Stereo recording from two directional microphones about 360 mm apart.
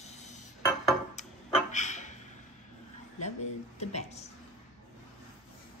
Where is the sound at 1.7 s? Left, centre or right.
Centre.